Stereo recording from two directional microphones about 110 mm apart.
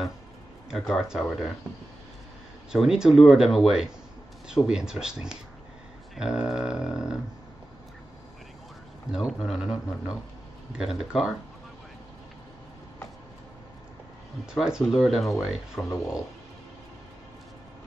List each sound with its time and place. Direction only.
0.7 s speech: centre (ahead or behind)
2.7 s speech: 5° right (ahead or behind)
6.1 s a sound: 5° right (ahead or behind)
9.1 s speech: 5° right (ahead or behind)
14.4 s speech: 5° right (ahead or behind)
15.8 s speech: 30° left (ahead or behind)